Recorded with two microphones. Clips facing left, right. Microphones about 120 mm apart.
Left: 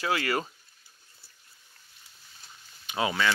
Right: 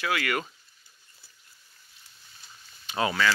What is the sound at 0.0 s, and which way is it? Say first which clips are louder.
Speech: left 1 dB; 30° left (ahead or behind).